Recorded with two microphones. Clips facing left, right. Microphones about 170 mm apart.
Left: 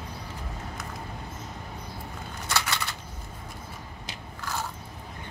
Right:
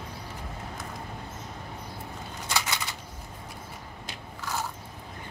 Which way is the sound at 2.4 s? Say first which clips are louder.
Left 1 dB; 15° right (ahead or behind).